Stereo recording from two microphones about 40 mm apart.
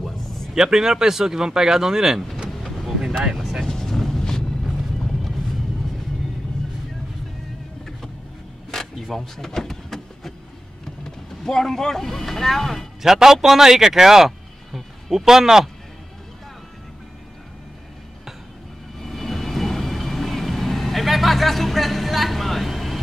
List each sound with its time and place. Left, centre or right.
0.6 s speech: centre
3.6 s vehicle: centre
4.2 s a sound: centre
4.6 s music: centre
8.7 s a sound: centre
11.1 s speech: centre
13.0 s speech: centre
18.9 s vehicle: centre